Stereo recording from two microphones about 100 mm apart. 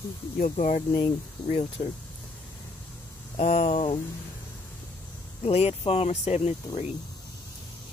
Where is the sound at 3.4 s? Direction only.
90° left.